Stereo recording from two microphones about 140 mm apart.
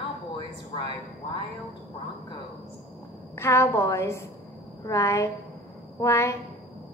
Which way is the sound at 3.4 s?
20° left (ahead or behind).